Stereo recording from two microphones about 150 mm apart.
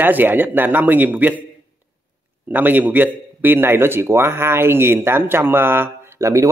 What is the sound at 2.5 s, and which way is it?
A man's voice, 10° right (ahead or behind).